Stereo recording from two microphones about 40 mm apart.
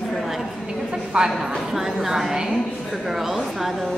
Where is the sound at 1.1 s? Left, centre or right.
Right.